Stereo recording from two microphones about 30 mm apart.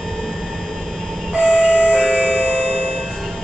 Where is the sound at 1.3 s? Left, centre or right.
Right.